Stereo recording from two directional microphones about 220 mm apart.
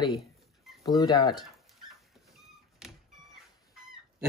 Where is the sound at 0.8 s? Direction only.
15° left (ahead or behind).